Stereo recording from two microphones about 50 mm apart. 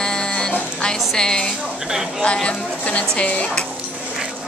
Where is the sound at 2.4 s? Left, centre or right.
Left.